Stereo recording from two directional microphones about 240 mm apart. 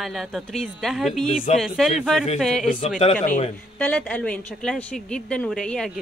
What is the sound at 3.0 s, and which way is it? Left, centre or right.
Speech, left.